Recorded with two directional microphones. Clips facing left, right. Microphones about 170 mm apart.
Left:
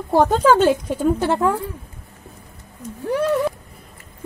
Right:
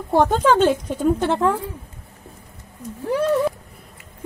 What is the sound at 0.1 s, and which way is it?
Speech, 5° left (ahead or behind).